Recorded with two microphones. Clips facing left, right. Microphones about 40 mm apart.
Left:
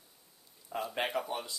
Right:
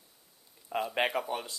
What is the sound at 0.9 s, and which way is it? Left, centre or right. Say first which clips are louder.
Speech: right 4 dB; right.